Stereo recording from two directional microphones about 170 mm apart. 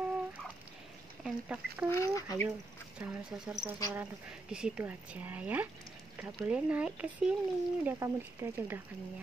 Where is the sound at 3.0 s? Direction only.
10° right (ahead or behind).